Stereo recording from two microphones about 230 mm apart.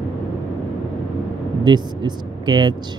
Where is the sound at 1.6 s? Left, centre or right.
Centre.